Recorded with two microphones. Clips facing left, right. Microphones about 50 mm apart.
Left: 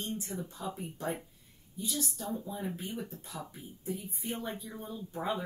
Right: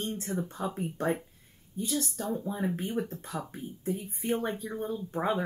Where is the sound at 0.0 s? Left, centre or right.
Right.